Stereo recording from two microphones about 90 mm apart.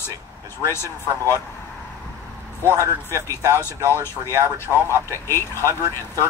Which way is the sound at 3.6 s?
30° left (ahead or behind).